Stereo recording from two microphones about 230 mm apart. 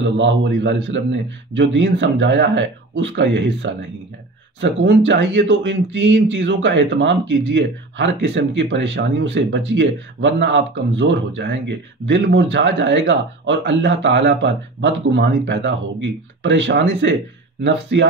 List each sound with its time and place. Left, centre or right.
0.0 s speech: right